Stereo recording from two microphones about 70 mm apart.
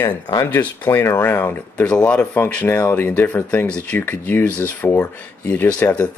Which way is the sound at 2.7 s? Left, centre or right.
Left.